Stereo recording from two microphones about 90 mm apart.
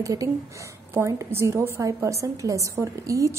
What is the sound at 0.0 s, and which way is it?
A woman's voice, 40° right (ahead or behind).